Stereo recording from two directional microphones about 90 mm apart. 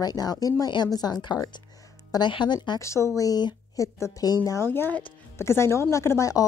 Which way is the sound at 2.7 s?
35° left (ahead or behind).